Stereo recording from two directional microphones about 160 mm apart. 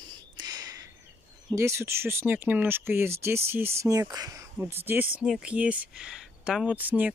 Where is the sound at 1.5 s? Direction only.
15° right (ahead or behind).